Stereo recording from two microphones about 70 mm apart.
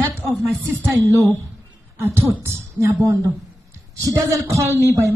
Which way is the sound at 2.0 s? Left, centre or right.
Right.